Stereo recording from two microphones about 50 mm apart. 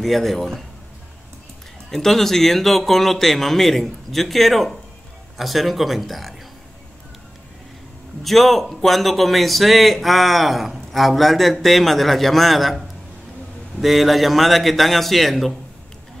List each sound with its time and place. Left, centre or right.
0.0 s speech: centre
1.9 s speech: centre
8.2 s speech: centre